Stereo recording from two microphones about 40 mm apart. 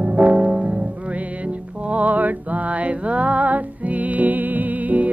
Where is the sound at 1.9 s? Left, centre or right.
Right.